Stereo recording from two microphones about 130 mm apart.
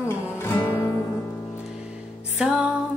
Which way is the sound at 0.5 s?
20° left (ahead or behind).